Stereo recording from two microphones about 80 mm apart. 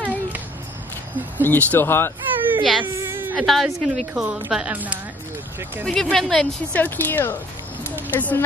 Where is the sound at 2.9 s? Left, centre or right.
Right.